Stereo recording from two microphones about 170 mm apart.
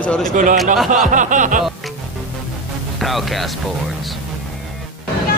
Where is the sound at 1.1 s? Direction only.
50° right (ahead or behind).